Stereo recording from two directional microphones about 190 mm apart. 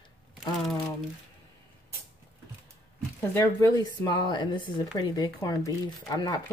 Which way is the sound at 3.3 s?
15° left (ahead or behind).